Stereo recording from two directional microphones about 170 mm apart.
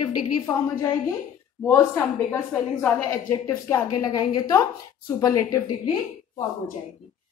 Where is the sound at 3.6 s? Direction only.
20° left (ahead or behind).